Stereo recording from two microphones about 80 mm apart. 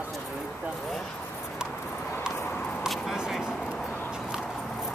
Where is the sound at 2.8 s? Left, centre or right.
Centre.